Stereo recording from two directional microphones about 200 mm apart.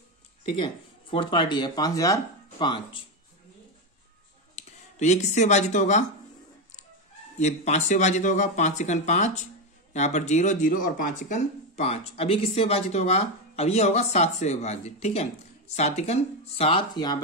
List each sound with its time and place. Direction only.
1.1 s speech: 25° left (ahead or behind)
4.6 s speech: 35° left (ahead or behind)
7.3 s speech: 35° left (ahead or behind); by 17.2 s 20° left (ahead or behind)